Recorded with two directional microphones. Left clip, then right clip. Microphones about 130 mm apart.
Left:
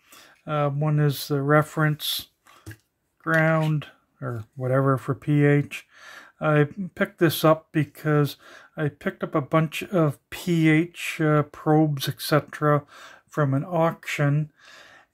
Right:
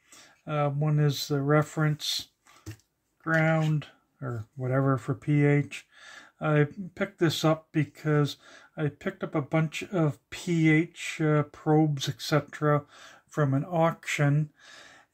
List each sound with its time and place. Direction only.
0.1 s speech: 25° left (ahead or behind)
3.3 s speech: 20° left (ahead or behind)